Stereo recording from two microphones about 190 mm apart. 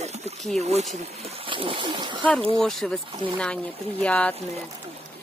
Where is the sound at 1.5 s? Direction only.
25° right (ahead or behind).